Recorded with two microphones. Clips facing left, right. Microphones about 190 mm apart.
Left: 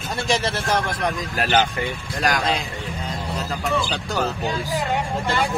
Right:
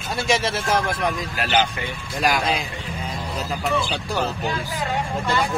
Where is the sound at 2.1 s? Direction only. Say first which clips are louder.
Right 1 dB; 10° right (ahead or behind).